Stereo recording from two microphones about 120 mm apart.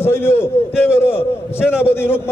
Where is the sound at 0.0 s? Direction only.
20° left (ahead or behind).